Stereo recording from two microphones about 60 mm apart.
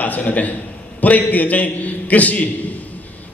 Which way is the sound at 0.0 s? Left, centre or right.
Left.